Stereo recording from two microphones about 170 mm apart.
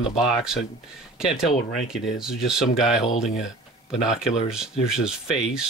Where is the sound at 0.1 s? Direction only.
Centre (ahead or behind).